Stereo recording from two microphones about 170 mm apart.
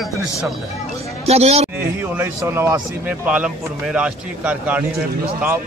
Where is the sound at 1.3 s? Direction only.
40° right (ahead or behind).